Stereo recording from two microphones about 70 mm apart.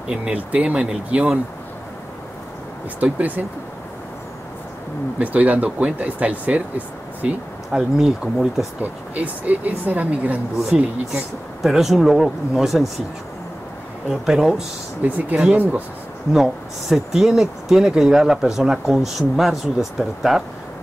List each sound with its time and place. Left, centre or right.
0.1 s speech: centre
3.0 s speech: right
5.2 s speech: right
9.1 s speech: right
10.6 s speech: centre
14.0 s speech: centre
15.0 s speech: right
16.9 s speech: centre